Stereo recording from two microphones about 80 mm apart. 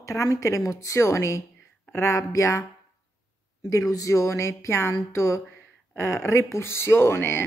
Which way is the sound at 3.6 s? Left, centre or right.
Left.